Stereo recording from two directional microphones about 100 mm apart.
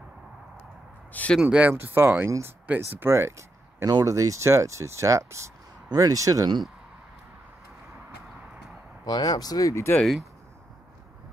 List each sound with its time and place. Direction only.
1.1 s a sound: 15° left (ahead or behind)
1.4 s speech: 10° right (ahead or behind); by 6.6 s 35° right (ahead or behind)
9.0 s speech: 45° left (ahead or behind)
9.9 s speech: centre (ahead or behind)